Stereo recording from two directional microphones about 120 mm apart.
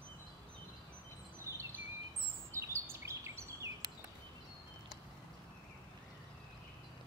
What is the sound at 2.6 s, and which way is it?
Bird vocalization, 20° right (ahead or behind).